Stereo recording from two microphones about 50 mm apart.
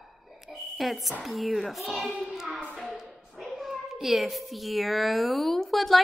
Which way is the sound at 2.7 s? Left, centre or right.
Centre.